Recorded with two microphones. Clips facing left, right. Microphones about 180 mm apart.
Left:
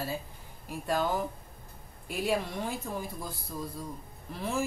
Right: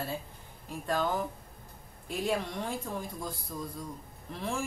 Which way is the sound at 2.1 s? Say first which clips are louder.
Left 1 dB; 5° left (ahead or behind).